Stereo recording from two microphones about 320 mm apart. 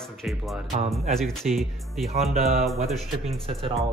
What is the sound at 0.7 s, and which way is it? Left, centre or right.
Speech, right.